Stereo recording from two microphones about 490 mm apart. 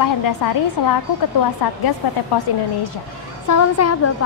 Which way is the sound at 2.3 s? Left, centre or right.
Left.